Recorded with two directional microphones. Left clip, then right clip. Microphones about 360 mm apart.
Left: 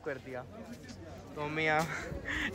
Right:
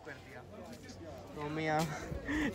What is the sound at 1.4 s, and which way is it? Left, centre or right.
Speech, centre.